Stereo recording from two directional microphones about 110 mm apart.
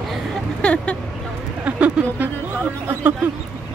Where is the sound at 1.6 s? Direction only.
10° right (ahead or behind).